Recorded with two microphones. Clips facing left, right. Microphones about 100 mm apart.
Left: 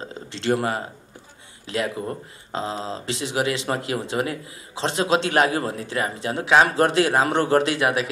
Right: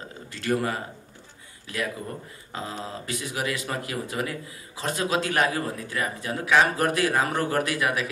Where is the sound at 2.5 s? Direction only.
25° left (ahead or behind).